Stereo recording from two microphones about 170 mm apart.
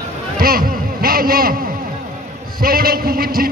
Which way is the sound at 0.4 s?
60° right (ahead or behind).